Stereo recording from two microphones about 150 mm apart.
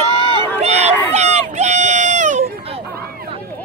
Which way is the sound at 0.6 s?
45° right (ahead or behind).